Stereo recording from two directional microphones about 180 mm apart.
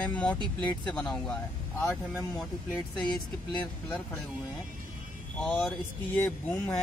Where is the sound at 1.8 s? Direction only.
15° left (ahead or behind).